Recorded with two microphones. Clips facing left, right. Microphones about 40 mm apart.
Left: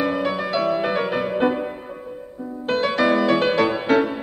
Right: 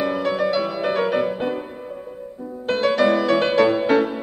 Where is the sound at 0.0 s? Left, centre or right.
Centre.